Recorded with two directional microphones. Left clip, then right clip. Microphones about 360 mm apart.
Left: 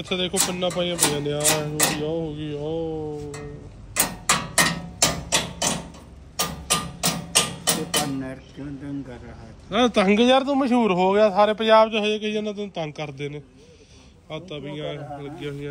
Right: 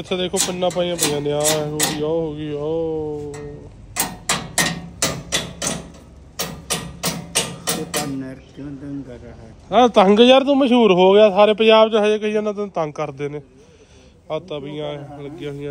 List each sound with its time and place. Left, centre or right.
0.0 s speech: centre
3.9 s hammer: centre
6.3 s music: centre
9.7 s speech: centre
10.2 s a man's voice: centre
12.1 s speech: centre